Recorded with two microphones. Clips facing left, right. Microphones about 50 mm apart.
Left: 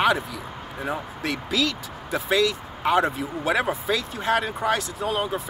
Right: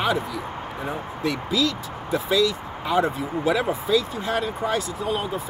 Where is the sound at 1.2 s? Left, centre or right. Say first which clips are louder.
Right 3 dB; left.